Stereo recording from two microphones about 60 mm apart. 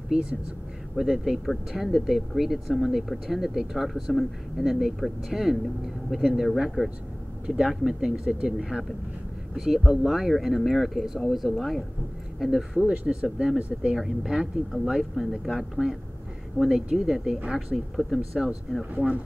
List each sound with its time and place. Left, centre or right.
0.9 s speech: centre
7.4 s speech: centre
12.8 s speech: centre
13.9 s speech: centre